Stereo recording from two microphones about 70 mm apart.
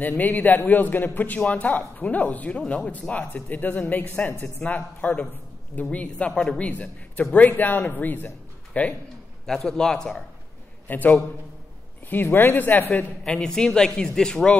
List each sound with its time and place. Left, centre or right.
0.0 s speech: left; by 6.7 s centre
7.3 s speech: left
9.5 s speech: centre
10.9 s speech: left
12.9 s speech: centre